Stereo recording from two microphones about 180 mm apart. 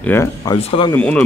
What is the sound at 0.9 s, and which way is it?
Speech, 10° left (ahead or behind).